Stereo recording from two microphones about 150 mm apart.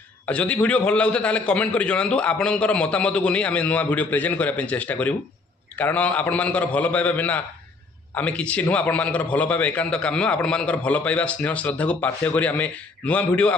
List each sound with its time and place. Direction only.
0.3 s a man's voice: 10° left (ahead or behind)